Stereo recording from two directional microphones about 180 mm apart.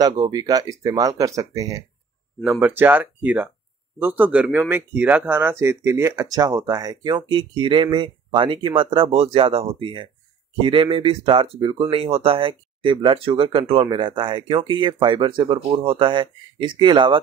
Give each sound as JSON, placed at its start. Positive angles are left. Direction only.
{"t": 0.0, "sound": "speech", "side_deg": -20}
{"t": 2.4, "sound": "speech", "side_deg": -10}